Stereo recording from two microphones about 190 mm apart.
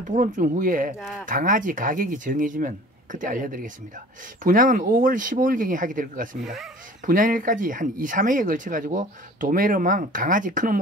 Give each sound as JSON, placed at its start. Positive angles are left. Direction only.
{"t": 0.0, "sound": "speech", "side_deg": -45}
{"t": 6.4, "sound": "speech", "side_deg": 0}
{"t": 7.1, "sound": "speech", "side_deg": -45}